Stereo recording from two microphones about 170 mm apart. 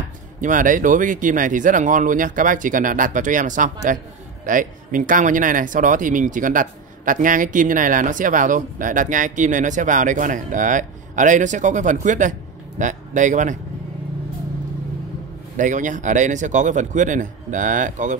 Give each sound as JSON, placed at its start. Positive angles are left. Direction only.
{"t": 0.4, "sound": "speech", "side_deg": -50}
{"t": 15.5, "sound": "speech", "side_deg": -50}